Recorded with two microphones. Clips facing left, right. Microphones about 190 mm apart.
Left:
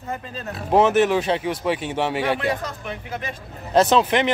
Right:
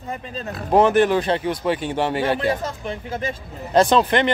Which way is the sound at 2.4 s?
30° right (ahead or behind).